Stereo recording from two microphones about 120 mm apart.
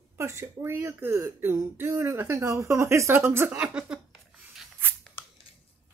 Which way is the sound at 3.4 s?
5° right (ahead or behind).